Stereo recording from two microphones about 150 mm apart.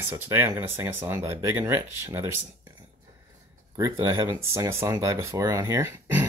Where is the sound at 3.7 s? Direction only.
20° right (ahead or behind).